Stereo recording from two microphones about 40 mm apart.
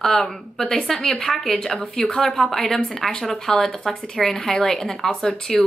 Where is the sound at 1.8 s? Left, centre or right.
Centre.